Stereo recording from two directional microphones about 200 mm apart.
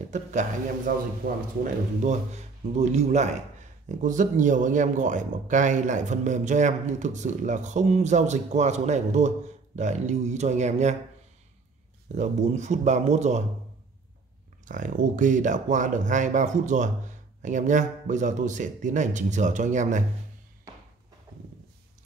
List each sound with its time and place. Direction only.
0.1 s a man's voice: 35° right (ahead or behind)
12.2 s a man's voice: 35° right (ahead or behind)
14.7 s a man's voice: 40° right (ahead or behind)